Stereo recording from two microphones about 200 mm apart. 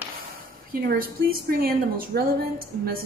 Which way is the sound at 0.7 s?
50° right (ahead or behind).